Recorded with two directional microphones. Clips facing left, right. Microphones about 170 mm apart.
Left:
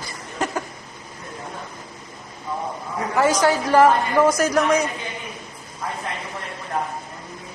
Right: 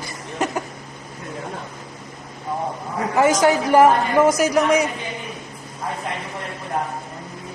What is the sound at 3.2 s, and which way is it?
A woman's voice, 15° right (ahead or behind).